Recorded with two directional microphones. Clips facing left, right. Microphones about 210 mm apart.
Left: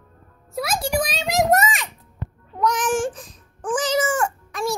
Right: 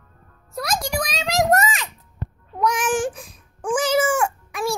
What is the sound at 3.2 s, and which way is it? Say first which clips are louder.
Wail: right 1 dB; 10° right (ahead or behind).